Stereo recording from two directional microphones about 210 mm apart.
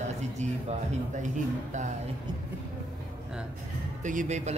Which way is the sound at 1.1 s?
35° right (ahead or behind).